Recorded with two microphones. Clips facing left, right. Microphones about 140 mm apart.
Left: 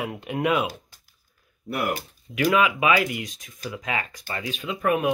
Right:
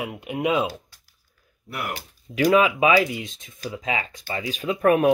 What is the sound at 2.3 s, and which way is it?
Speech, 40° right (ahead or behind).